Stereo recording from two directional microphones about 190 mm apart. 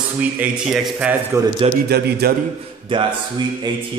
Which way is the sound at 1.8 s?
55° right (ahead or behind).